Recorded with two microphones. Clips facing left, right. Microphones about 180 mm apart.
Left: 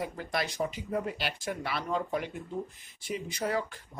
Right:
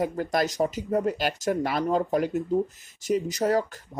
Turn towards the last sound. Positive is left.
turn(degrees=-40)  # may be behind; listen again after turning